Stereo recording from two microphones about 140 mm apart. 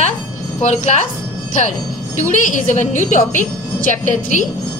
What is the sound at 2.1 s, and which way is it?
Speech, 65° left (ahead or behind).